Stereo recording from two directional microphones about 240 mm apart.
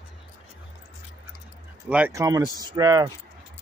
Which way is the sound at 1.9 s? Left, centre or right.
Centre.